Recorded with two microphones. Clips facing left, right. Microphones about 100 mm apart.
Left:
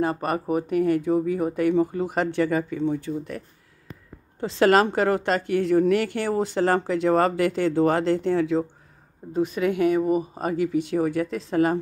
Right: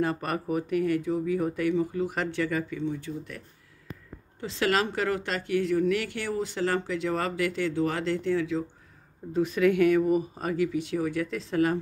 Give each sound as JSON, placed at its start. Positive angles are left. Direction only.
{"t": 0.0, "sound": "a woman's voice", "side_deg": 30}
{"t": 9.2, "sound": "speech", "side_deg": 20}
{"t": 10.8, "sound": "a woman's voice", "side_deg": 50}